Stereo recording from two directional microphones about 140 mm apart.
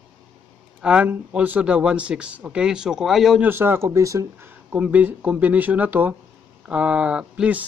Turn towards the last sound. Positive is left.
turn(degrees=-10)  # may be behind; listen again after turning